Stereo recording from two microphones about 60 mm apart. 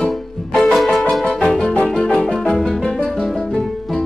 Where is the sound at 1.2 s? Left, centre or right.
Centre.